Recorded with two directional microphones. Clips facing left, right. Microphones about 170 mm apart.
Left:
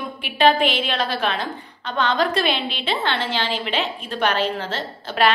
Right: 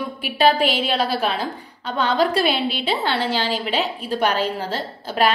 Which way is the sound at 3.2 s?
40° right (ahead or behind).